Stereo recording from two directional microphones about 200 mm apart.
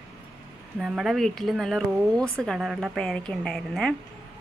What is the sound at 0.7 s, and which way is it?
A woman's voice, 5° right (ahead or behind).